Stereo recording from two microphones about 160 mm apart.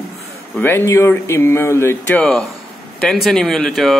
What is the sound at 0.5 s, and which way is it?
Speech, 15° left (ahead or behind).